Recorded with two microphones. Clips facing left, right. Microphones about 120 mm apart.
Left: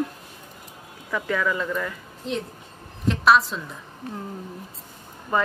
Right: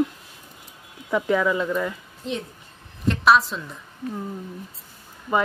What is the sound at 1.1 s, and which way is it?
Speech, 20° right (ahead or behind).